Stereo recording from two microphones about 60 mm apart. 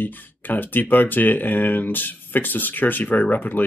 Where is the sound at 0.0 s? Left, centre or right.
Left.